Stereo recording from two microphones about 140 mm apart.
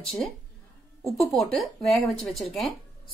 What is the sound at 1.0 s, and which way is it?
Speech, centre (ahead or behind).